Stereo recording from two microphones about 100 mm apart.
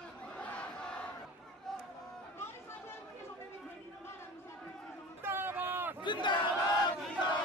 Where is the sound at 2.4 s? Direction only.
25° left (ahead or behind).